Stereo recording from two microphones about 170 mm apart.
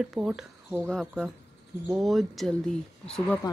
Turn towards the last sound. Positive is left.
turn(degrees=5)  # may be behind; listen again after turning